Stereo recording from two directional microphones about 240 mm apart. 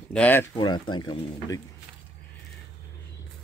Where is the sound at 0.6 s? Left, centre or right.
Centre.